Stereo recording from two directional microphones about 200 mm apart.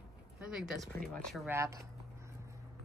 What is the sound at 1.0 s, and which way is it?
Speech, centre (ahead or behind).